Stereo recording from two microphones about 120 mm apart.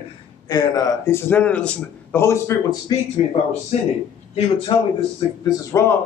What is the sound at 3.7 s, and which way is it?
Speech, 65° left (ahead or behind).